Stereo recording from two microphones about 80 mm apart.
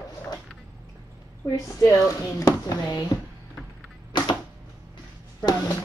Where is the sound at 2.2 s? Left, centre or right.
Left.